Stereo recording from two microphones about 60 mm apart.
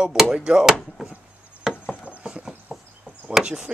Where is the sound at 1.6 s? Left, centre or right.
Centre.